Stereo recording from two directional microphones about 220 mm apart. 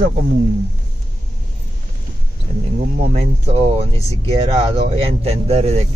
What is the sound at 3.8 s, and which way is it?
Speech, 25° right (ahead or behind).